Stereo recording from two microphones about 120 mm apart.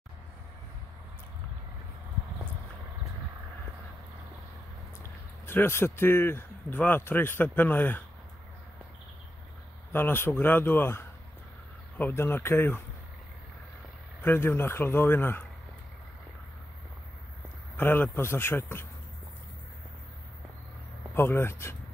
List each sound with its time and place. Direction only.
5.5 s speech: 20° left (ahead or behind)
9.9 s a man's voice: 20° left (ahead or behind)
14.2 s a man's voice: 20° left (ahead or behind)
17.7 s a man's voice: 15° left (ahead or behind)
21.1 s a man's voice: 20° left (ahead or behind)